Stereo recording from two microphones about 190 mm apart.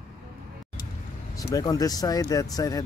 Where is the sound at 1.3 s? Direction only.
20° left (ahead or behind).